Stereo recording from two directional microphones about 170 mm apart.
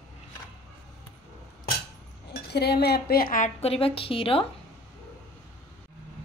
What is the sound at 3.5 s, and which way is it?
Speech, 35° left (ahead or behind).